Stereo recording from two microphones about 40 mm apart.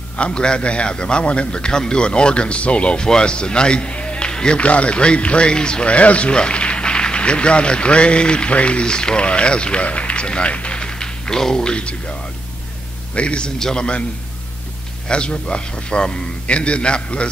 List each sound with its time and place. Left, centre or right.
0.2 s a man's voice: left
4.6 s speech: left
11.0 s speech: centre
13.6 s a man's voice: centre
15.0 s speech: left